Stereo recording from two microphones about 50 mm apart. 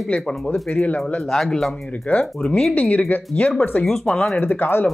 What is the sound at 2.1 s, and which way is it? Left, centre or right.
Speech, left.